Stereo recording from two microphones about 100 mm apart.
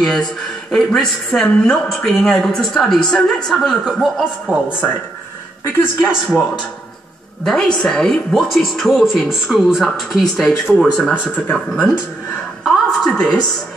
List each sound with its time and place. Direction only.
0.0 s a woman's voice: 5° left (ahead or behind)
4.6 s speech: 20° left (ahead or behind)
5.9 s a man's voice: 20° left (ahead or behind)
7.4 s a woman's voice: 5° left (ahead or behind)
12.6 s a sound: 5° left (ahead or behind)